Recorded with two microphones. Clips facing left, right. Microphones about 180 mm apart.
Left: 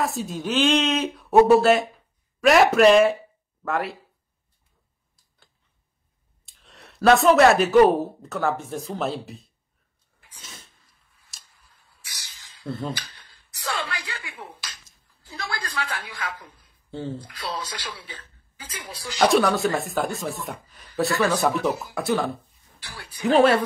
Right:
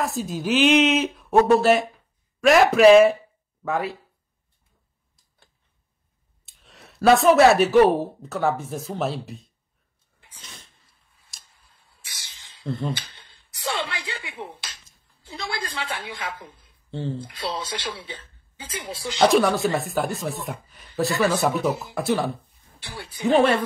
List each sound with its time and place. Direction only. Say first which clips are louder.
0.0 s speech: right 1 dB; centre (ahead or behind)
6.4 s speech: even; centre (ahead or behind)
10.4 s a sound: left 1 dB; centre (ahead or behind)
11.7 s a sound: even; 25° right (ahead or behind)
12.9 s finger snapping: right 3 dB; 25° right (ahead or behind)
15.2 s speech: right 2 dB; 25° right (ahead or behind)
16.9 s speech: right 1 dB; centre (ahead or behind)
17.2 s speech: right 2 dB; 25° right (ahead or behind)
19.2 s speech: right 1 dB; centre (ahead or behind)
22.8 s speech: right 5 dB; 25° right (ahead or behind)